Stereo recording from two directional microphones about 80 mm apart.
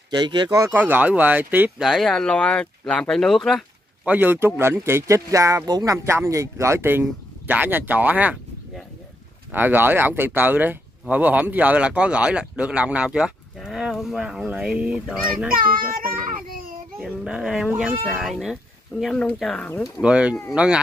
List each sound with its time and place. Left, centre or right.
0.2 s speech: right
0.7 s speech: right
1.8 s speech: centre
4.0 s speech: right
5.7 s speech: right
6.0 s speech: right; by 8.4 s centre
9.5 s speech: right; by 15.5 s centre
17.0 s speech: centre
17.6 s speech: centre
18.2 s speech: centre
19.1 s speech: centre
20.0 s speech: centre